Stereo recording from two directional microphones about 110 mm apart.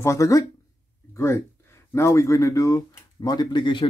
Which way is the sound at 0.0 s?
30° left (ahead or behind).